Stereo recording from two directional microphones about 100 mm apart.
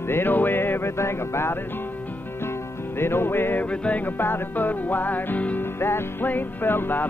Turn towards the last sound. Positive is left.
turn(degrees=20)  # may be behind; listen again after turning